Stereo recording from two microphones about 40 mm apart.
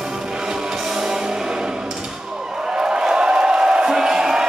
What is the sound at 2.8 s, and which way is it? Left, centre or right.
Music, centre.